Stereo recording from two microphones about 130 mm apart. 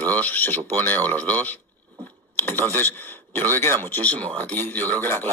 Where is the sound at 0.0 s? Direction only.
10° left (ahead or behind).